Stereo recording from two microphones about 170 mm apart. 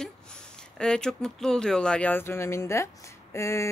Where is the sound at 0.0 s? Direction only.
5° left (ahead or behind).